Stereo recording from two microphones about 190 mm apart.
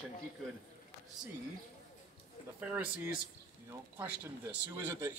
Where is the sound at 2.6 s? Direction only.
10° right (ahead or behind).